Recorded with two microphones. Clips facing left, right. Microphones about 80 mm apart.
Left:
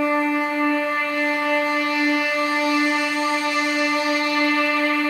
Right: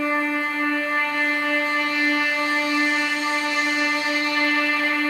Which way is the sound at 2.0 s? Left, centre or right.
Right.